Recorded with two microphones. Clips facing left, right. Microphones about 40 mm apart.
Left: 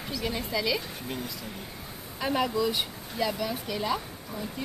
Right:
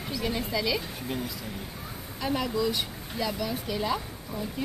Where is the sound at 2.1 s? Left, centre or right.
Centre.